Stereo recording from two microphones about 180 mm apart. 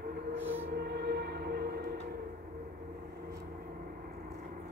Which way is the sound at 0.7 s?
60° right (ahead or behind).